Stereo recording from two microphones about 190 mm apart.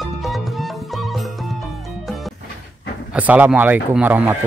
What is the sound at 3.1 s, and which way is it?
Speech, 10° right (ahead or behind).